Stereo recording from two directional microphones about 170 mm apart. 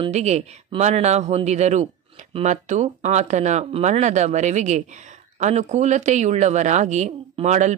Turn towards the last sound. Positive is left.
turn(degrees=-45)  # may be behind; listen again after turning